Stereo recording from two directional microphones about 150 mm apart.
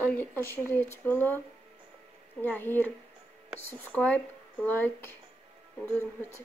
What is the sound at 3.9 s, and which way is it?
Speech, 10° left (ahead or behind).